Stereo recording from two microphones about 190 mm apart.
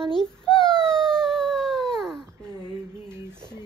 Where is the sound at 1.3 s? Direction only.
Centre (ahead or behind).